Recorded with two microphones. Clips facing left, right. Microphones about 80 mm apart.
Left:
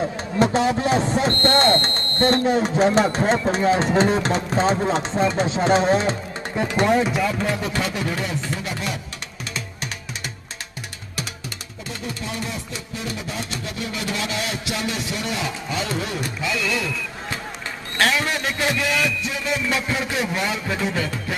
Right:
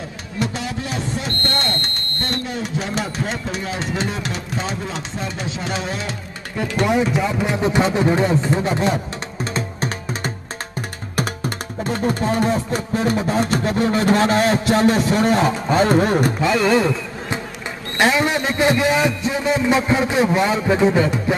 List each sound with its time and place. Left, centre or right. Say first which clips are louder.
0.4 s speech: left 6 dB; left
6.5 s speech: even; centre
7.4 s a man's voice: right 6 dB; right
11.1 s music: right 10 dB; right
17.9 s a man's voice: right 4 dB; centre